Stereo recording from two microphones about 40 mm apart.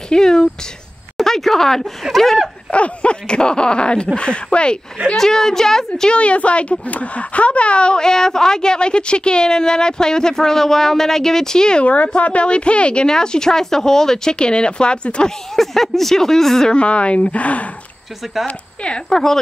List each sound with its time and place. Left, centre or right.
0.1 s a woman's voice: centre
2.7 s speech: left
5.0 s a woman's voice: centre
6.0 s speech: left
8.0 s a woman's voice: centre
11.8 s a woman's voice: left
15.5 s a woman's voice: centre
16.7 s speech: left
19.0 s a woman's voice: centre